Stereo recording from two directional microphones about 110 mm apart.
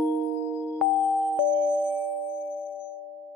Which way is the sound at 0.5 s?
15° left (ahead or behind).